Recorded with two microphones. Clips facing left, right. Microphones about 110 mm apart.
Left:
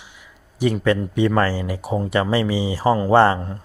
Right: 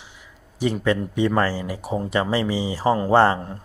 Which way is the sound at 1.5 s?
10° left (ahead or behind).